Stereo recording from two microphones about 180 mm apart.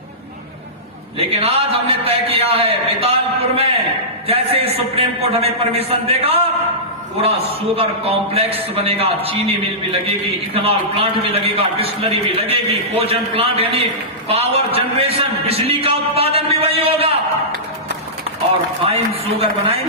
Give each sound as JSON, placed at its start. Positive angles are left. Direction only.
{"t": 1.1, "sound": "a man's voice", "side_deg": -35}
{"t": 10.5, "sound": "a man's voice", "side_deg": -35}
{"t": 18.9, "sound": "a man's voice", "side_deg": -35}